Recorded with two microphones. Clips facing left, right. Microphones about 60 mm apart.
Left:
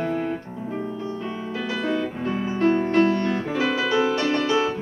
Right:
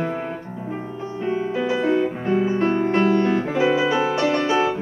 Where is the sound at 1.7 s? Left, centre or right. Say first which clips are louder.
Right 4 dB; right.